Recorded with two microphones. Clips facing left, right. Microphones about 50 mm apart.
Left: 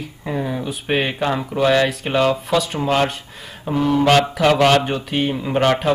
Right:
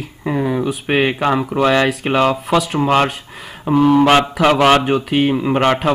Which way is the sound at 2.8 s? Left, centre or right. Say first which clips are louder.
Right 4 dB; right.